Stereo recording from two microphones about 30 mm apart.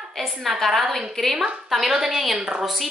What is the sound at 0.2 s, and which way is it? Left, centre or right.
A woman's voice, centre.